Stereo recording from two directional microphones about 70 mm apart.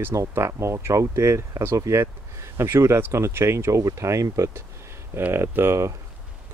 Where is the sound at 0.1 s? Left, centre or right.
Right.